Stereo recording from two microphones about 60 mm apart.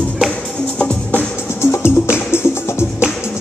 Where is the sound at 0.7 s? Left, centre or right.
Centre.